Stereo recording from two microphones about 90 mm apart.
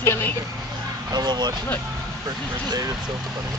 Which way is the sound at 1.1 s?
50° right (ahead or behind).